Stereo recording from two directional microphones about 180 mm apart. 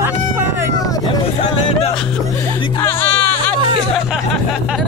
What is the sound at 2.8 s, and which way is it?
Music, 10° left (ahead or behind).